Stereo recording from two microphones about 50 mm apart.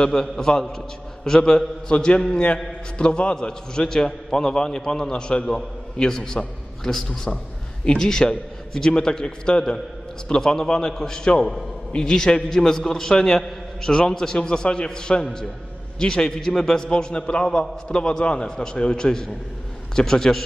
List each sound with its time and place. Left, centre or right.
0.0 s a man's voice: centre